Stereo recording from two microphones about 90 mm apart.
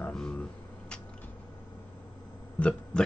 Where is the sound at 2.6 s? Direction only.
15° left (ahead or behind).